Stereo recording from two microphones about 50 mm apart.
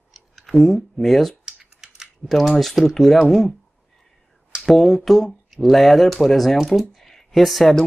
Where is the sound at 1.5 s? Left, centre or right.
Centre.